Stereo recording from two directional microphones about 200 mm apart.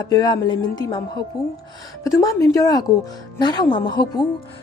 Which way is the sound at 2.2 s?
15° left (ahead or behind).